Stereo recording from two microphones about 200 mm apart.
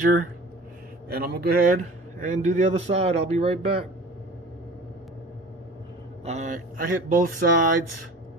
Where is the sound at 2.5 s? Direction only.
35° right (ahead or behind).